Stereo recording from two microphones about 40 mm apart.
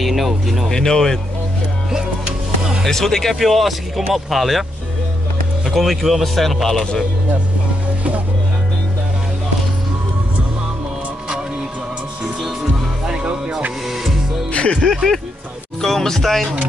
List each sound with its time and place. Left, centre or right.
0.0 s speech: centre
0.7 s speech: centre
1.9 s music: centre
2.9 s speech: centre
5.7 s speech: centre
13.0 s music: centre
13.8 s music: centre
14.8 s speech: centre